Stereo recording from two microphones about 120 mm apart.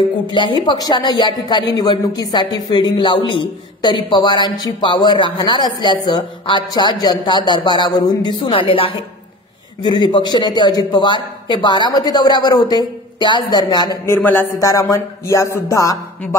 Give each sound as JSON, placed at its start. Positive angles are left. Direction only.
{"t": 0.3, "sound": "a woman's voice", "side_deg": 45}
{"t": 8.4, "sound": "speech", "side_deg": 45}
{"t": 10.1, "sound": "a woman's voice", "side_deg": 35}
{"t": 14.0, "sound": "a man's voice", "side_deg": 20}